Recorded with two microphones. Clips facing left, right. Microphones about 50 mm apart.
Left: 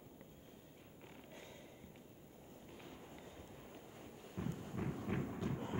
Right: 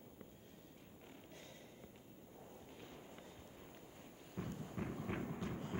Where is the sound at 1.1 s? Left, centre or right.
Centre.